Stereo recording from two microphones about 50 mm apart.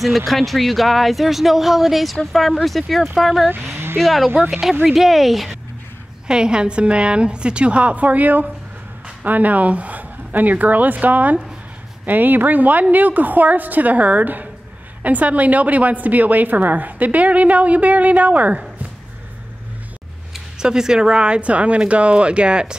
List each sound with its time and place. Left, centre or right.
0.0 s speech: centre
3.7 s a sound: right
4.0 s speech: centre
6.2 s a woman's voice: centre; by 18.6 s right
20.5 s a woman's voice: centre